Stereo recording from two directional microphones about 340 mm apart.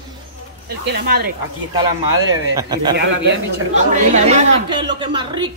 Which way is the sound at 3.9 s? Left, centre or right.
Centre.